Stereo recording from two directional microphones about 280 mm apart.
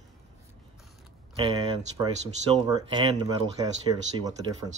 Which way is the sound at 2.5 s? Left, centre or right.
Centre.